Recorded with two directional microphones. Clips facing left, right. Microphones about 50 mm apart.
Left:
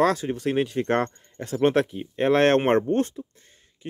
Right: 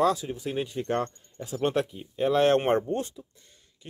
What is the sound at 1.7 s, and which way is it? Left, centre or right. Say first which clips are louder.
Speech: left 5 dB; left.